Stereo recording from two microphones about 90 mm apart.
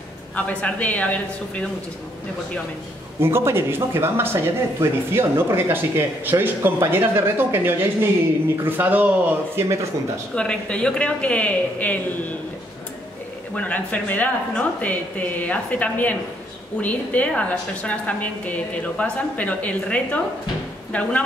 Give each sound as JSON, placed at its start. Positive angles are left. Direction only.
{"t": 0.5, "sound": "a woman's voice", "side_deg": 15}
{"t": 3.2, "sound": "speech", "side_deg": -25}
{"t": 9.6, "sound": "speech", "side_deg": -35}
{"t": 10.3, "sound": "a woman's voice", "side_deg": 10}
{"t": 13.6, "sound": "a woman's voice", "side_deg": 15}